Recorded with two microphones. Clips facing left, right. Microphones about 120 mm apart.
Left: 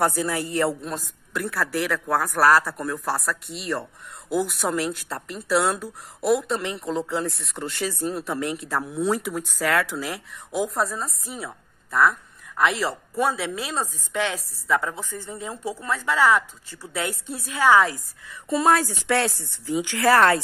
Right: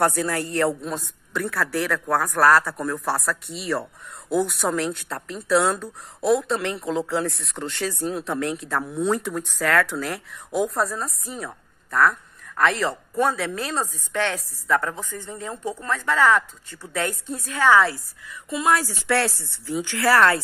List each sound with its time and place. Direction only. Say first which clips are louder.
0.0 s a woman's voice: right 1 dB; centre (ahead or behind)
18.2 s a woman's voice: left 3 dB; 35° left (ahead or behind)
18.9 s speech: even; 20° left (ahead or behind)